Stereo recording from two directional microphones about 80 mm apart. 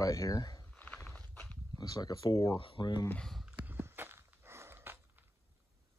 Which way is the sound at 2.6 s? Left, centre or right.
Left.